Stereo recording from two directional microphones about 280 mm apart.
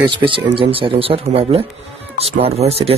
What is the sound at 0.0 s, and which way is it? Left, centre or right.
Speech, centre.